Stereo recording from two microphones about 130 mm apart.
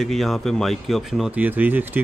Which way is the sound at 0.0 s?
Centre (ahead or behind).